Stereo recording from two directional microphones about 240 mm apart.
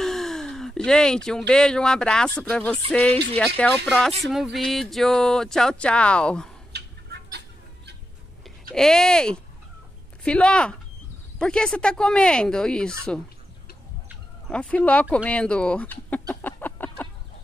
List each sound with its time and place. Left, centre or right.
0.0 s a sound: centre
1.5 s speech: centre
6.7 s chicken: right
8.7 s speech: centre
14.5 s speech: centre
15.1 s fowl: centre